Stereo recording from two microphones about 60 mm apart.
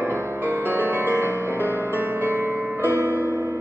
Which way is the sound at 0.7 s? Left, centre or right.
Right.